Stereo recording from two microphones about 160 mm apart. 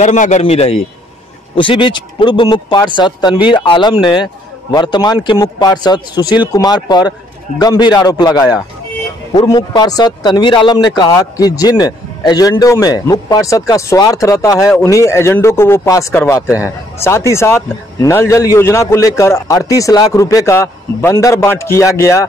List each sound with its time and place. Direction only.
0.0 s a man's voice: 45° left (ahead or behind); by 22.2 s 20° left (ahead or behind)